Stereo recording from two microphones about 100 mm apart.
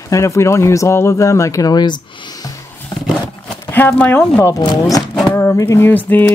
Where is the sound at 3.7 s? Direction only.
20° left (ahead or behind).